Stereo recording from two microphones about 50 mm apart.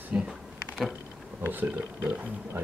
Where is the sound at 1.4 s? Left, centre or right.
Right.